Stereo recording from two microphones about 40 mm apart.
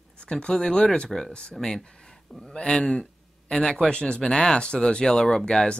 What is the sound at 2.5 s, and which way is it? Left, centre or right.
Speech, left.